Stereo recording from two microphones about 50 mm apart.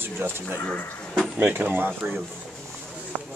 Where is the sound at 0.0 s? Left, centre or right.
Right.